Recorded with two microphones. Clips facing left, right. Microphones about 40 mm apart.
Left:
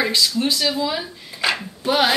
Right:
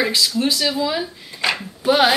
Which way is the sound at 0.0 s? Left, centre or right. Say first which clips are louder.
Right 1 dB; centre.